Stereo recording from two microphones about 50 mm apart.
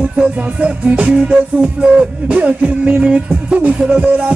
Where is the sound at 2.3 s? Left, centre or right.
Right.